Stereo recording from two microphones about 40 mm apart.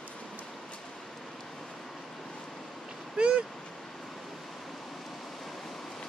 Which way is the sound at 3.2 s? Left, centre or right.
Right.